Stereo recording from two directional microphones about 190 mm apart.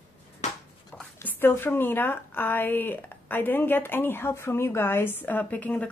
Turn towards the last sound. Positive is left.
turn(degrees=5)  # may be behind; listen again after turning